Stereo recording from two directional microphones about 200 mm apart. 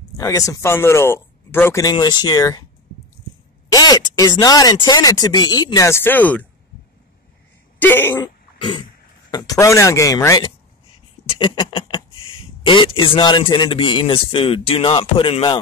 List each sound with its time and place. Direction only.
0.2 s speech: 15° left (ahead or behind)
3.7 s a sound: 20° left (ahead or behind)
4.2 s speech: 20° left (ahead or behind)
7.8 s speech: 10° left (ahead or behind)
8.2 s cough: 25° left (ahead or behind)
9.3 s speech: 20° left (ahead or behind)
11.2 s a sound: 25° left (ahead or behind)
12.6 s speech: 25° left (ahead or behind)